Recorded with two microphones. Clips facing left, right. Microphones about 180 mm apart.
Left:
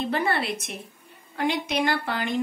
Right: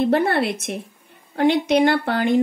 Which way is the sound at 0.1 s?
55° right (ahead or behind).